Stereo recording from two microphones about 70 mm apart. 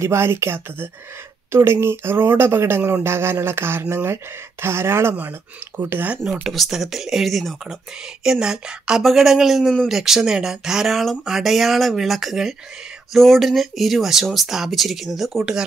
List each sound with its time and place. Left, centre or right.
0.0 s speech: right
6.2 s speech: centre
6.5 s speech: centre
8.2 s speech: centre